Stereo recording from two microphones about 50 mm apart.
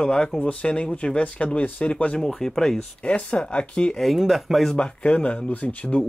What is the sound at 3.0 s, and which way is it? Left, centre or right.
Speech, left.